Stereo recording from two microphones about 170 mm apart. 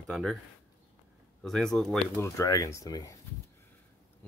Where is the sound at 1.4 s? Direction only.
Centre (ahead or behind).